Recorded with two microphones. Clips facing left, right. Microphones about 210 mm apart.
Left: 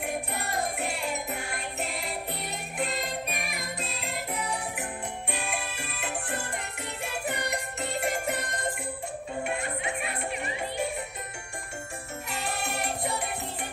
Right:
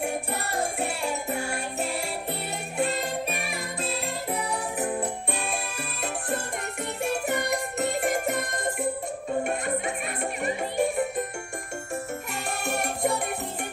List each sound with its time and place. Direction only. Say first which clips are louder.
3.4 s music: right 4 dB; 30° right (ahead or behind)
5.4 s music: right 3 dB; 35° right (ahead or behind)
10.0 s music: right 4 dB; 45° right (ahead or behind)
12.7 s music: right 8 dB; 45° right (ahead or behind)